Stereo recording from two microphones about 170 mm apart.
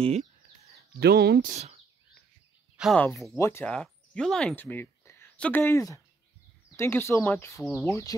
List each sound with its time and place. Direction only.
0.0 s speech: 40° right (ahead or behind)
0.9 s speech: 70° right (ahead or behind)
1.5 s speech: 40° right (ahead or behind)
2.8 s speech: 5° left (ahead or behind)
3.3 s speech: 15° left (ahead or behind)